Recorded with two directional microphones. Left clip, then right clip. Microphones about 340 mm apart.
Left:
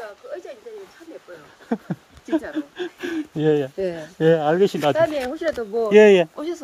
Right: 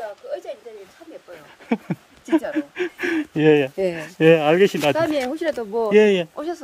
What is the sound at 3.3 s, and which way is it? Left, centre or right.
Speech, centre.